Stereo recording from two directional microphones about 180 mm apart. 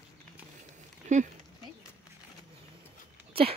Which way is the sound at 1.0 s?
40° right (ahead or behind).